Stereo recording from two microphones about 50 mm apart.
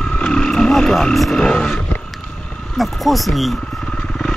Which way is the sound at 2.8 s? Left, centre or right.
Centre.